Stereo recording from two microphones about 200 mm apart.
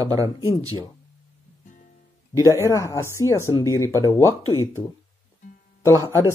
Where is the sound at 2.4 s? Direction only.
15° left (ahead or behind).